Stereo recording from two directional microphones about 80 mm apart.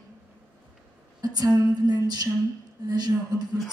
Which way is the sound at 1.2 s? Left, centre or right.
Right.